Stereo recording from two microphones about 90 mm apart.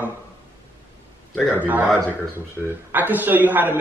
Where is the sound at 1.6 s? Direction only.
20° right (ahead or behind).